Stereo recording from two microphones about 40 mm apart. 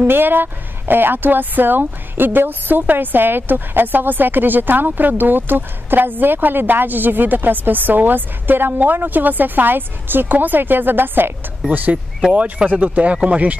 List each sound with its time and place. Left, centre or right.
0.0 s speech: right
11.7 s speech: right
12.2 s speech: right